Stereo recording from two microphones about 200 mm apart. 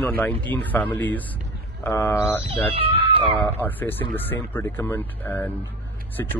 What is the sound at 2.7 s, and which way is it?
Speech, 25° right (ahead or behind).